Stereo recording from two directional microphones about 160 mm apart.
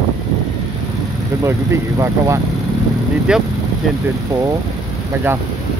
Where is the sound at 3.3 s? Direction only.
5° right (ahead or behind).